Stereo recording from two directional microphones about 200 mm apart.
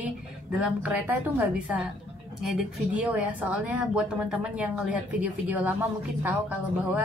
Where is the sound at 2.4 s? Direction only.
Centre (ahead or behind).